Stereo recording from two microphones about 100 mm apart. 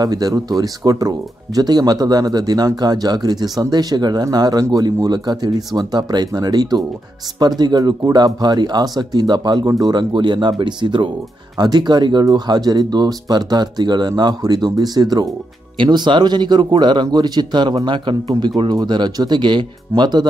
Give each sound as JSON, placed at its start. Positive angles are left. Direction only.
{"t": 0.0, "sound": "speech", "side_deg": -40}